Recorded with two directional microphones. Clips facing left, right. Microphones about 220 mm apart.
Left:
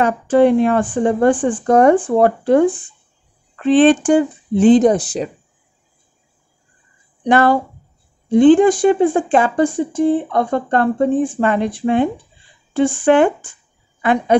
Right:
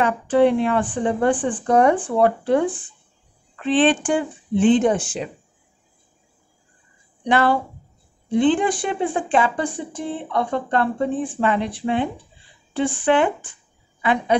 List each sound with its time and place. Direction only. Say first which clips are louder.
0.0 s speech: left 4 dB; 45° left (ahead or behind)
7.2 s speech: left 5 dB; 45° left (ahead or behind)